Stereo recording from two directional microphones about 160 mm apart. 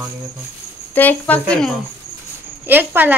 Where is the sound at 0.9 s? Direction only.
10° left (ahead or behind).